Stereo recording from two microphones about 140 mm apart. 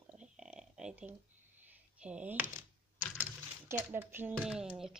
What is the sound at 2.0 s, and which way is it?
Speech, 10° right (ahead or behind).